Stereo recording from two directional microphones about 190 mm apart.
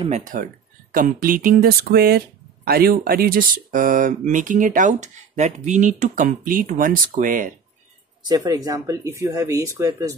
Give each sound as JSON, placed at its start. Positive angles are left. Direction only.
{"t": 0.0, "sound": "speech", "side_deg": -40}
{"t": 8.3, "sound": "speech", "side_deg": -20}